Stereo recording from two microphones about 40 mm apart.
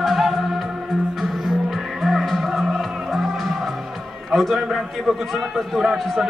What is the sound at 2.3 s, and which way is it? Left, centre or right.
Music, centre.